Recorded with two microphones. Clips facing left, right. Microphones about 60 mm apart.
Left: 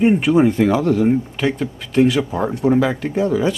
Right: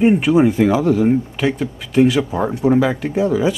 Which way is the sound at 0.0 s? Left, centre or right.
Centre.